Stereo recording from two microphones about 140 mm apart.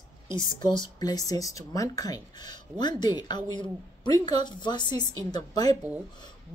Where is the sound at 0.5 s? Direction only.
30° left (ahead or behind).